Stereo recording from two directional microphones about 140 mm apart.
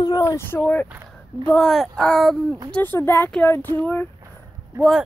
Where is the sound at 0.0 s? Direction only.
25° left (ahead or behind).